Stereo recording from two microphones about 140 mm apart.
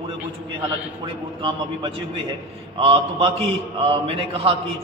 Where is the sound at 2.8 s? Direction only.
45° right (ahead or behind).